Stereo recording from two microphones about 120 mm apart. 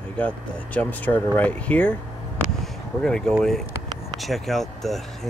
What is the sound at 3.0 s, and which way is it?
Speech, 5° left (ahead or behind).